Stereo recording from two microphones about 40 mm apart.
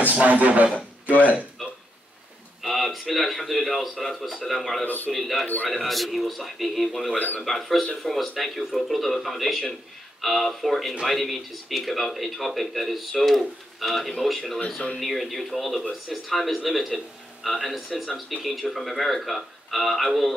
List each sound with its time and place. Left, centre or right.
0.1 s speech: right
1.6 s dishes: centre
2.6 s a man's voice: centre
4.8 s a man's voice: left
5.2 s a man's voice: centre
7.2 s a man's voice: left
7.4 s a man's voice: centre